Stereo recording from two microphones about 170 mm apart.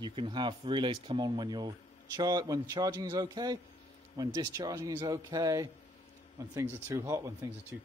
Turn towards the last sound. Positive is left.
turn(degrees=-20)  # may be behind; listen again after turning